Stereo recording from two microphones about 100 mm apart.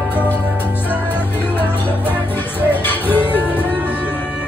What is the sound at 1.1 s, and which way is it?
Music, 20° left (ahead or behind).